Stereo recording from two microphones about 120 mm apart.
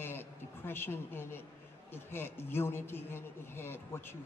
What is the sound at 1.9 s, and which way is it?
Speech, 20° left (ahead or behind).